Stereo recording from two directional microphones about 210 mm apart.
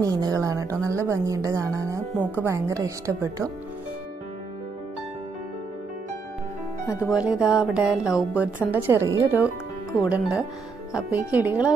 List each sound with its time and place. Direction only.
0.0 s a woman's voice: 15° right (ahead or behind)
7.2 s music: 5° right (ahead or behind)
8.4 s a woman's voice: 10° right (ahead or behind)
10.0 s music: 5° right (ahead or behind)
10.9 s a woman's voice: 5° right (ahead or behind)